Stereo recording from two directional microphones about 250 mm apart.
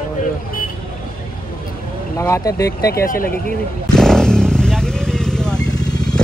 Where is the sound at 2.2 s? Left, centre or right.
Centre.